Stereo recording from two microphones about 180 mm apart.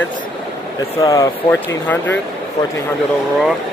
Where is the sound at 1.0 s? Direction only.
20° left (ahead or behind).